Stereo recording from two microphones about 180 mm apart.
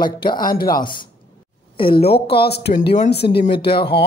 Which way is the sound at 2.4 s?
65° left (ahead or behind).